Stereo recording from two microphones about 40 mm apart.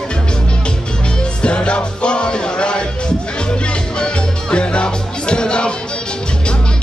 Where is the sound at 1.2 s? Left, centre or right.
Left.